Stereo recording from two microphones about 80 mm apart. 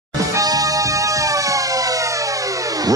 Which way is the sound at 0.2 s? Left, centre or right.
Right.